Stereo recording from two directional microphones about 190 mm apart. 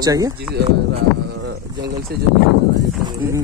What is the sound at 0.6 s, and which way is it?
Speech, 60° right (ahead or behind).